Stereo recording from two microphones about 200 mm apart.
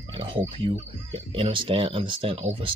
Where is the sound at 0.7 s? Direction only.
25° right (ahead or behind).